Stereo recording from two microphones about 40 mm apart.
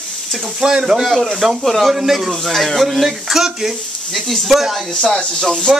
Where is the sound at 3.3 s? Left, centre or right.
Centre.